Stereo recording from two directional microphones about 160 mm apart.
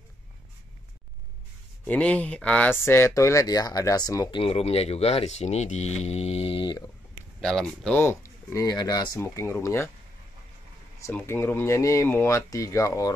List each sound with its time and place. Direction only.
1.9 s speech: 10° left (ahead or behind)
4.4 s speech: 40° left (ahead or behind)
7.3 s speech: 5° left (ahead or behind)
8.0 s speech: 15° left (ahead or behind)
11.0 s speech: 15° left (ahead or behind)